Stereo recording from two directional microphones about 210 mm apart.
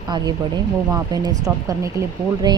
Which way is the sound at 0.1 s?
20° right (ahead or behind).